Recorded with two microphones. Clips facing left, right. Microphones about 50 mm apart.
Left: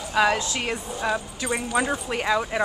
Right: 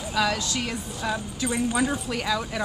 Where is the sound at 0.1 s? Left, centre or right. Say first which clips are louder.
Left 4 dB; left.